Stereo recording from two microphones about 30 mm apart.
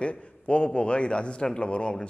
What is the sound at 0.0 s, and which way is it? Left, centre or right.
A man's voice, left.